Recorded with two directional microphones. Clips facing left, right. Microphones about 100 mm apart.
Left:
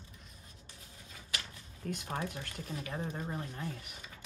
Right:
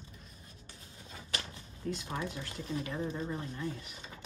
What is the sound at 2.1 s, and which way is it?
Speech, 50° left (ahead or behind).